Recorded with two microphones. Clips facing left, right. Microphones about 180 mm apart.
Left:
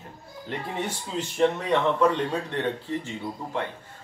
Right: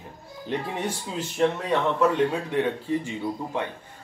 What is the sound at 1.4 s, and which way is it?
Speech, 10° right (ahead or behind).